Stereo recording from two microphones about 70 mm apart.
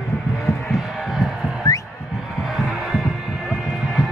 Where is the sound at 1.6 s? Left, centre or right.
Left.